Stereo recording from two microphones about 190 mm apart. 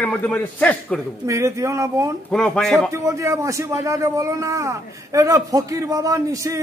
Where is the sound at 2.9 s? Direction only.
15° right (ahead or behind).